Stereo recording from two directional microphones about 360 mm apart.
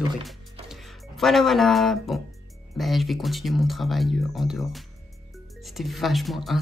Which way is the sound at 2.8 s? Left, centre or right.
Centre.